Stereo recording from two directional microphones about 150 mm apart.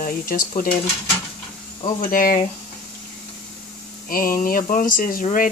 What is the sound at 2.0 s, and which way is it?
Speech, 70° left (ahead or behind).